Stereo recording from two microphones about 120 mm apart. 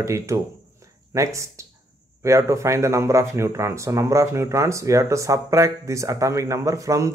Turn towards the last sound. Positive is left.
turn(degrees=-25)  # may be behind; listen again after turning